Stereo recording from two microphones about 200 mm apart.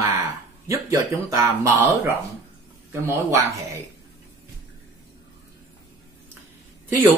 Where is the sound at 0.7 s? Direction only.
15° right (ahead or behind).